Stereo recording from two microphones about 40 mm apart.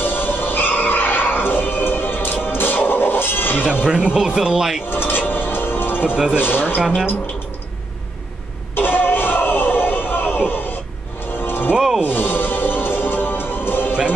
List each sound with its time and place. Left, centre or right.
0.0 s music: left
3.8 s speech: right
4.8 s a sound: left
5.3 s music: left
6.0 s speech: centre
6.3 s speech: left
8.7 s a sound: left
11.4 s music: left